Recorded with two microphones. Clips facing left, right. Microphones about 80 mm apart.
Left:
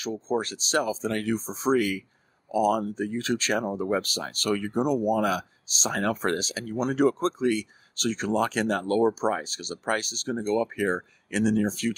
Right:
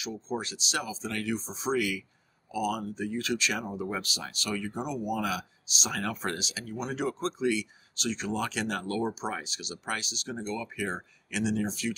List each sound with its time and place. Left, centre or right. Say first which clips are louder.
0.0 s speech: left 6 dB; left